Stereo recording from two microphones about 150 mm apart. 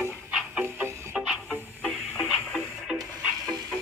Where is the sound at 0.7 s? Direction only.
15° right (ahead or behind).